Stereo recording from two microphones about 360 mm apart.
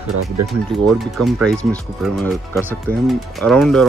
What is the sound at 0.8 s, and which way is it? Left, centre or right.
Speech, centre.